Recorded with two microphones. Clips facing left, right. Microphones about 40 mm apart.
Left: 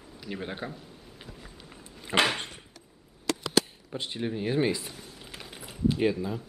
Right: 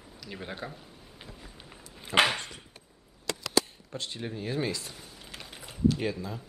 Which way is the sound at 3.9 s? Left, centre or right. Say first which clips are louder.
Left 4 dB; centre.